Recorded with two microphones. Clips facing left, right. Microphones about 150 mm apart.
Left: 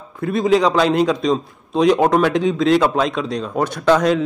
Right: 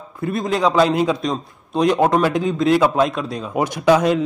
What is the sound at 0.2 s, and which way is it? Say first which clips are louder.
A man's voice: left 4 dB; centre (ahead or behind).